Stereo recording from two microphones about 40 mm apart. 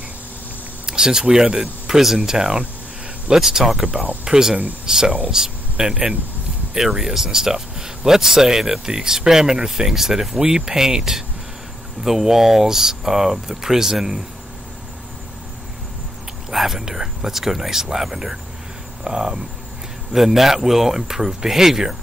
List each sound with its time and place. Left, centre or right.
0.8 s speech: centre
3.8 s speech: right
4.2 s speech: centre
7.0 s speech: centre
16.5 s speech: centre